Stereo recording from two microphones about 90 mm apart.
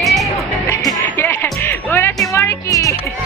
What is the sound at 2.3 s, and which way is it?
Music, 40° left (ahead or behind).